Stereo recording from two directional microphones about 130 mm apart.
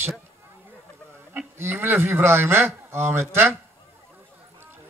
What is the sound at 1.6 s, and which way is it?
Speech, 20° right (ahead or behind).